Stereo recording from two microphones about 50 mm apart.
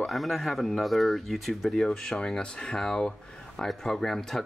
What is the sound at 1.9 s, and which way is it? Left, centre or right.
Speech, centre.